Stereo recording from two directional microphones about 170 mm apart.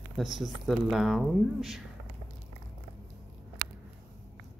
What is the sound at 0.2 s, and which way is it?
Speech, centre (ahead or behind).